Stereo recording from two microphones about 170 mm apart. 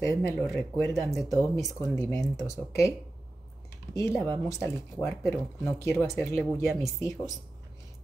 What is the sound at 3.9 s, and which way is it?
Speech, 15° left (ahead or behind).